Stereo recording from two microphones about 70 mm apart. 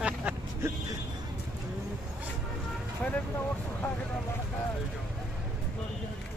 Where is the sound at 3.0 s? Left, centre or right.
Left.